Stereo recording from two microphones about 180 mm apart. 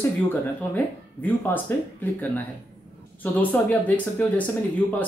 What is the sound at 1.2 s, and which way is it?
Speech, 10° left (ahead or behind).